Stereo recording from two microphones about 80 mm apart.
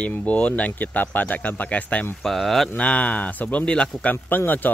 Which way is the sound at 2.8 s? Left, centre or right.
Centre.